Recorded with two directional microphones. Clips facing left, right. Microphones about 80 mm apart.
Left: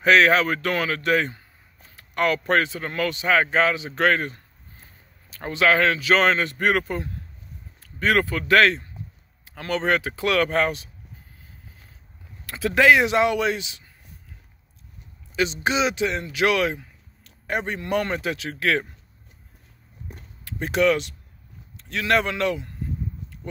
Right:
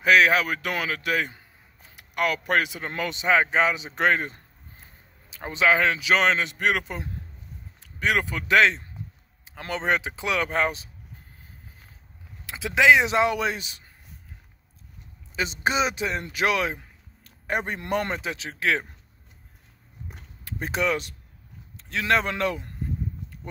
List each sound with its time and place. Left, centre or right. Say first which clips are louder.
0.0 s speech: left 2 dB; centre
12.4 s speech: left 1 dB; centre
15.3 s speech: left 2 dB; right
20.6 s speech: left 5 dB; right